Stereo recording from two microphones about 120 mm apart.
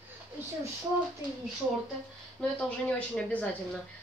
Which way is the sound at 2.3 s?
10° left (ahead or behind).